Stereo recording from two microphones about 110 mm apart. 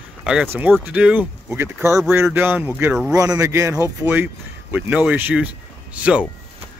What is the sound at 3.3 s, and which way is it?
Speech, 30° right (ahead or behind).